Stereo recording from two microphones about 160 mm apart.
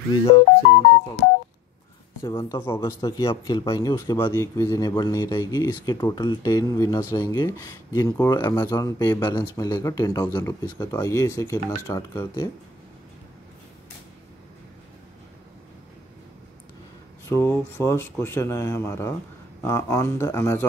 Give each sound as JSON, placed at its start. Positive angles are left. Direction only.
{"t": 0.1, "sound": "speech", "side_deg": 35}
{"t": 2.2, "sound": "a man's voice", "side_deg": 30}
{"t": 2.6, "sound": "speech", "side_deg": 15}
{"t": 3.0, "sound": "a man's voice", "side_deg": 30}
{"t": 17.3, "sound": "speech", "side_deg": 15}